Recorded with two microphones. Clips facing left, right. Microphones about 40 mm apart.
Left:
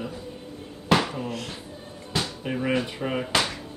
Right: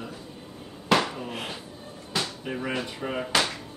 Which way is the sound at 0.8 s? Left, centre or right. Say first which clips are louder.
Left 1 dB; centre.